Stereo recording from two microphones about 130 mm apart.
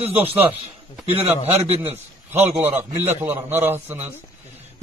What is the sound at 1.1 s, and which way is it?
Speech, 50° right (ahead or behind).